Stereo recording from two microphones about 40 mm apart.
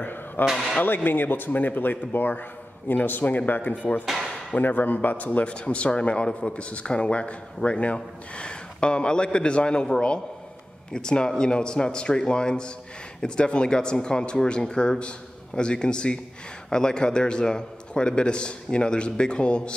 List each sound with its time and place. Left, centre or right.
0.0 s drawer open or close: left
0.8 s speech: left
4.0 s speech: centre
4.6 s speech: left
5.4 s speech: left